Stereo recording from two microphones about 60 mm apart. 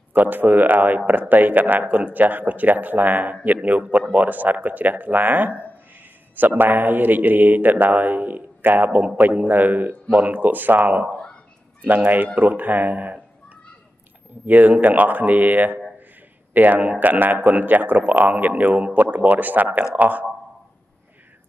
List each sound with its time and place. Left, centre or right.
0.1 s speech: right